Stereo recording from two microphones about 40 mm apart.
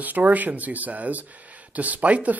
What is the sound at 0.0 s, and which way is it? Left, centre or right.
A man's voice, right.